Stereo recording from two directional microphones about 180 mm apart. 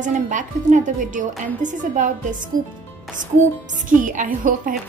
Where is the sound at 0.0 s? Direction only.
45° right (ahead or behind).